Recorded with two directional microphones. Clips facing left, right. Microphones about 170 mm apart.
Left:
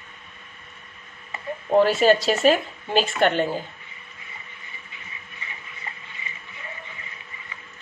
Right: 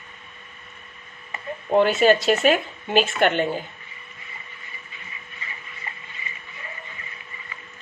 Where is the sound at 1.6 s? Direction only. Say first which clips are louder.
Even; centre (ahead or behind).